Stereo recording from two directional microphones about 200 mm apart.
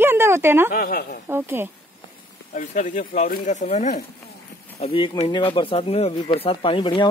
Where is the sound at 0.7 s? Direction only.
45° left (ahead or behind).